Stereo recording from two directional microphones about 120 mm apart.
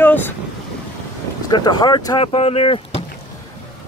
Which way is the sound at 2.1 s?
55° left (ahead or behind).